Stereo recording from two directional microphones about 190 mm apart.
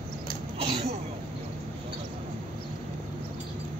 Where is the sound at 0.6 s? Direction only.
30° right (ahead or behind).